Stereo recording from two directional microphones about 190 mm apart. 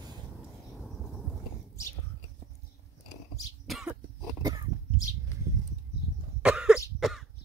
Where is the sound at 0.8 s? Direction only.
Centre (ahead or behind).